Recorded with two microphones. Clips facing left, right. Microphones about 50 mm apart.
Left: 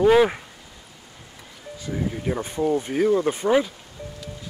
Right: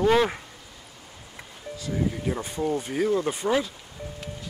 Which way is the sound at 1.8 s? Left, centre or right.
Centre.